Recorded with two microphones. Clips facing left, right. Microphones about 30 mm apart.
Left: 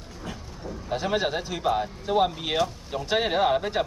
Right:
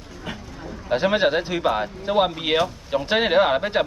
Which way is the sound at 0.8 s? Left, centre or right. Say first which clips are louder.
Right 7 dB; right.